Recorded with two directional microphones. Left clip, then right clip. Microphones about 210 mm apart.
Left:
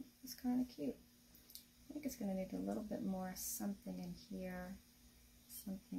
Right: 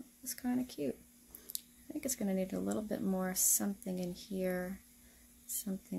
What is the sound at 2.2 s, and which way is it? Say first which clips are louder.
Speech: right 7 dB; 50° right (ahead or behind).